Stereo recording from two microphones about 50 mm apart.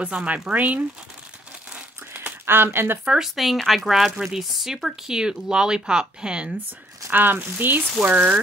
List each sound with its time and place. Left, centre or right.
0.0 s speech: right
2.4 s speech: right
3.2 s speech: centre
7.1 s speech: right